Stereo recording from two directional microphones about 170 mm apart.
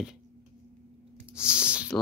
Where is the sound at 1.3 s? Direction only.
5° right (ahead or behind).